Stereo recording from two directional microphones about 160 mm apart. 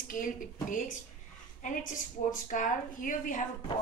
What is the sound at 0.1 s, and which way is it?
A woman's voice, 60° left (ahead or behind).